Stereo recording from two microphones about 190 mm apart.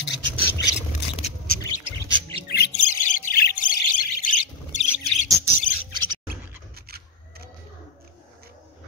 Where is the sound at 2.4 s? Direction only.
60° left (ahead or behind).